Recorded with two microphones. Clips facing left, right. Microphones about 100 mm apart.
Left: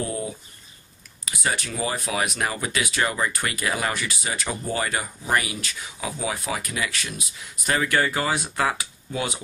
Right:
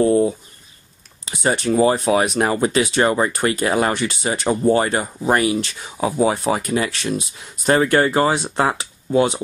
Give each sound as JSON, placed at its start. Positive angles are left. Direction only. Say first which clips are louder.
{"t": 0.0, "sound": "speech", "louder": "right 14 dB", "side_deg": -30}